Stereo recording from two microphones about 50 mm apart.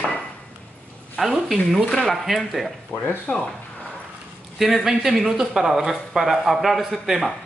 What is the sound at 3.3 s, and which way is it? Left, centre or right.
Speech, left.